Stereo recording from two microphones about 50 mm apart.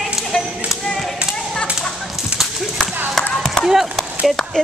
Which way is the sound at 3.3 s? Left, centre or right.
Centre.